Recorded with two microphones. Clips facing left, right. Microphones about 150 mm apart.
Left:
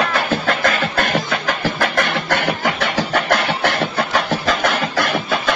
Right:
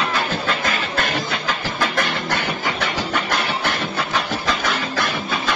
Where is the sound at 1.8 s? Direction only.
60° left (ahead or behind).